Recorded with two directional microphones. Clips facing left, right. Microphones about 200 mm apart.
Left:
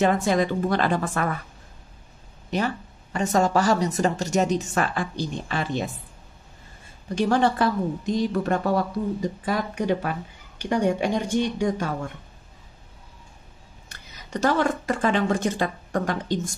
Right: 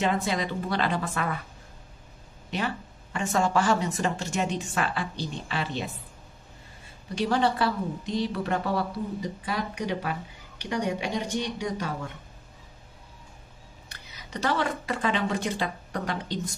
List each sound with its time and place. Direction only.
0.0 s a woman's voice: 50° left (ahead or behind)
2.5 s speech: 40° left (ahead or behind)
7.2 s a woman's voice: 45° left (ahead or behind)
13.8 s speech: 45° left (ahead or behind)